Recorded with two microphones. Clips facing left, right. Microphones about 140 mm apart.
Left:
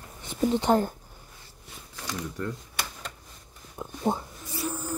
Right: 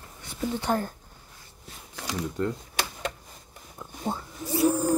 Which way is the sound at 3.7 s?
20° left (ahead or behind).